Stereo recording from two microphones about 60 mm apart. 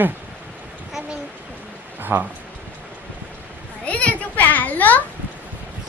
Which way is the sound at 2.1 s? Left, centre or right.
Right.